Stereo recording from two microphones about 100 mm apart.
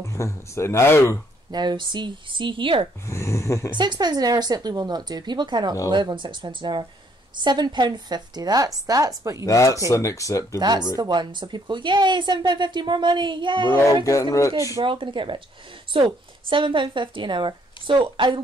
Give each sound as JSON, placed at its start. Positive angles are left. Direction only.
{"t": 0.0, "sound": "speech", "side_deg": 30}
{"t": 1.5, "sound": "speech", "side_deg": -45}
{"t": 3.1, "sound": "speech", "side_deg": 30}
{"t": 3.7, "sound": "a woman's voice", "side_deg": -45}
{"t": 9.4, "sound": "speech", "side_deg": 35}
{"t": 10.6, "sound": "speech", "side_deg": -45}
{"t": 14.0, "sound": "speech", "side_deg": 30}
{"t": 14.8, "sound": "speech", "side_deg": -60}